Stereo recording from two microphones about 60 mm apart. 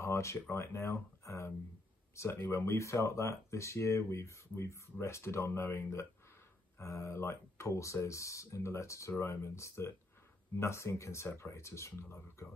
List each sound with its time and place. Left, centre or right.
0.0 s speech: left
2.3 s speech: left